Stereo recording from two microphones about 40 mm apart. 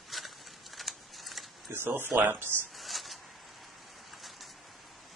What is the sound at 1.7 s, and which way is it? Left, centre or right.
Speech, right.